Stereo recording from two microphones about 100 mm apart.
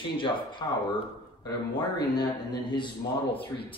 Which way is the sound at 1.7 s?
45° left (ahead or behind).